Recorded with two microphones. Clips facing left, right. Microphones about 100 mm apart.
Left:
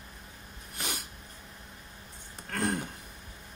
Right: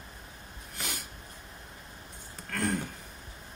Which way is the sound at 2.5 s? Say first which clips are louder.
Even; 20° left (ahead or behind).